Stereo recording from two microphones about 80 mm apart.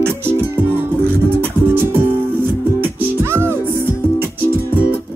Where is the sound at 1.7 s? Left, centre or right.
Right.